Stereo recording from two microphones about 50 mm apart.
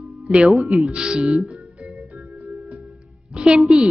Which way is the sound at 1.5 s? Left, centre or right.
Right.